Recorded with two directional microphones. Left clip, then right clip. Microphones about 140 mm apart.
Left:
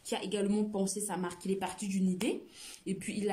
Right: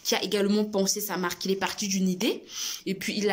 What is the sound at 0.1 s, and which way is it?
A woman's voice, 10° left (ahead or behind).